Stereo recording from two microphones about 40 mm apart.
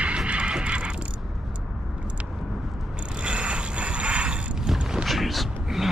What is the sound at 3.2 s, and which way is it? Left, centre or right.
Mechanisms, right.